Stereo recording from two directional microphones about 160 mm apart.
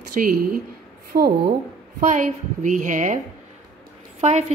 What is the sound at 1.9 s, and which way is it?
A woman's voice, 50° right (ahead or behind).